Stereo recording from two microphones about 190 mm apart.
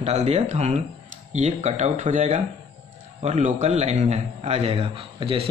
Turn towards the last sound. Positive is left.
turn(degrees=-30)  # may be behind; listen again after turning